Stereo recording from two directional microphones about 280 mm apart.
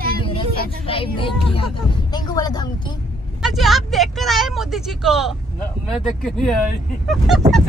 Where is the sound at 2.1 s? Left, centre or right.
Centre.